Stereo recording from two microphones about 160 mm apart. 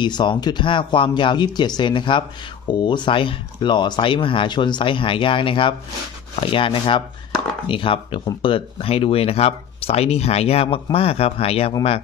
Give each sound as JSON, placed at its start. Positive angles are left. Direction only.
{"t": 0.0, "sound": "speech", "side_deg": 30}